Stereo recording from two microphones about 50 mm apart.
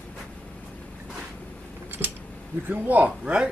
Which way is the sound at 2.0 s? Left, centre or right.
Right.